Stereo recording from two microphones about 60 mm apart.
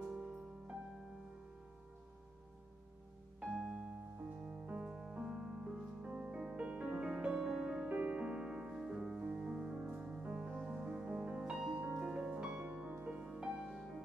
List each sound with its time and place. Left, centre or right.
0.0 s music: centre
3.3 s music: centre; by 6.3 s right
6.3 s music: centre
13.7 s music: centre